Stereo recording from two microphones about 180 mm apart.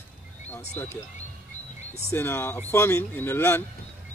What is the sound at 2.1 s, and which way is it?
Speech, 10° left (ahead or behind).